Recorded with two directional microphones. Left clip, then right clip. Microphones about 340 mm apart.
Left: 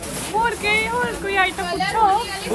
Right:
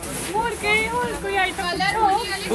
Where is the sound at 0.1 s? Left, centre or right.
Centre.